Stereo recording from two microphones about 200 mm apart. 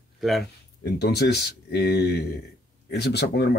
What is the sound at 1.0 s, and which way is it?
Speech, 55° left (ahead or behind).